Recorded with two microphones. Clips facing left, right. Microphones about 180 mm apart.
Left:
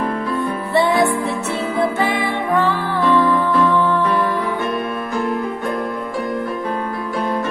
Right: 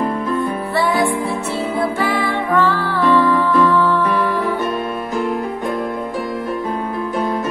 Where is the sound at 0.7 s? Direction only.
20° left (ahead or behind).